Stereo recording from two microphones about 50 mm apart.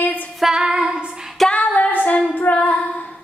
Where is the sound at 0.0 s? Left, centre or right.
Left.